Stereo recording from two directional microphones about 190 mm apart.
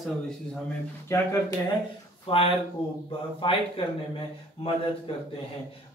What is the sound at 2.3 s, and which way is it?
Speech, 30° left (ahead or behind).